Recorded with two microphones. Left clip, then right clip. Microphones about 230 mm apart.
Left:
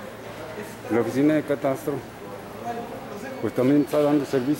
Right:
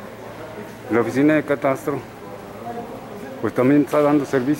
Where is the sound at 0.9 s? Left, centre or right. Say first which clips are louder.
Right 4 dB; centre.